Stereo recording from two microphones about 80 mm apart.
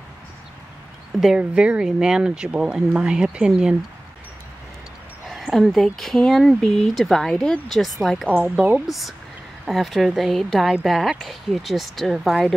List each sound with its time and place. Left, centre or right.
1.2 s speech: centre
5.3 s speech: centre
8.5 s speech: centre
8.8 s speech: centre